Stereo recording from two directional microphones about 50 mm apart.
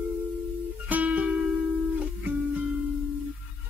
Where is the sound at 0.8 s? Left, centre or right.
Right.